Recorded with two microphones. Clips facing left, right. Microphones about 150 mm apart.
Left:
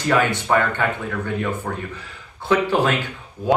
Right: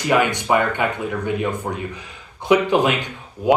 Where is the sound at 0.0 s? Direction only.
15° right (ahead or behind).